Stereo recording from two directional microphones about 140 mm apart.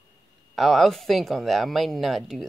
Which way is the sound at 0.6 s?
Centre (ahead or behind).